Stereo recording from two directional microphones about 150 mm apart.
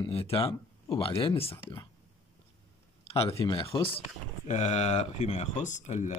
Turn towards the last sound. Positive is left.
turn(degrees=50)  # may be behind; listen again after turning